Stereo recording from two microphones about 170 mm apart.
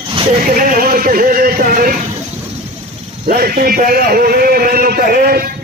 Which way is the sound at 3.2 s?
55° right (ahead or behind).